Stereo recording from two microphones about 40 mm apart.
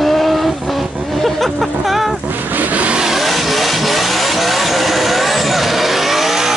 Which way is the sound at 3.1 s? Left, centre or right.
Centre.